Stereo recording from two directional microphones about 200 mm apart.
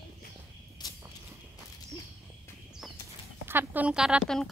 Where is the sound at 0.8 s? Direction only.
20° left (ahead or behind).